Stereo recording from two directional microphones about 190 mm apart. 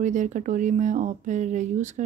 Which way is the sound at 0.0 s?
40° right (ahead or behind).